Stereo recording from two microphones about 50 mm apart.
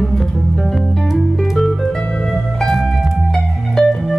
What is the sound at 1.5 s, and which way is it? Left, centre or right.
Music, centre.